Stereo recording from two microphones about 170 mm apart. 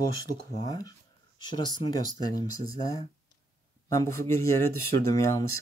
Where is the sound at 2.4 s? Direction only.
20° left (ahead or behind).